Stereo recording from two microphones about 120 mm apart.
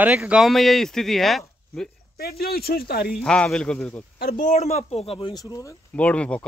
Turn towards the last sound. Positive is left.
turn(degrees=10)  # may be behind; listen again after turning